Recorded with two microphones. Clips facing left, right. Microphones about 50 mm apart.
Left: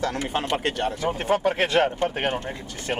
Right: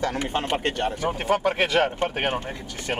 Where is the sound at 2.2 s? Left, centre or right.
Right.